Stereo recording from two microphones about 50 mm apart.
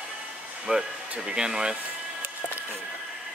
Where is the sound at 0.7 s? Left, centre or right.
Centre.